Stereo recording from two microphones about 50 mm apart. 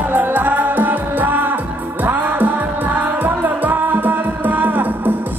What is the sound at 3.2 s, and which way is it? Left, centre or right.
Music, right.